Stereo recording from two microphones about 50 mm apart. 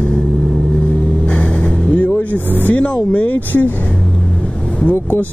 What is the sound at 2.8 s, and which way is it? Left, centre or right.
Speech, left.